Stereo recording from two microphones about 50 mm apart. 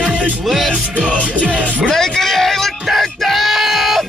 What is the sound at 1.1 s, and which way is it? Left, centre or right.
Music, right.